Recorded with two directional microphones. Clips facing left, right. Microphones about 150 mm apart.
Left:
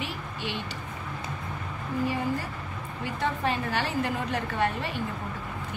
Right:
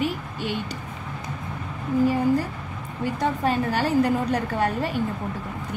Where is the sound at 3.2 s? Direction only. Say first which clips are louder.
Right 5 dB; 40° right (ahead or behind).